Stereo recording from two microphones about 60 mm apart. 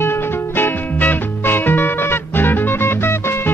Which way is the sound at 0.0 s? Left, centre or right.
Left.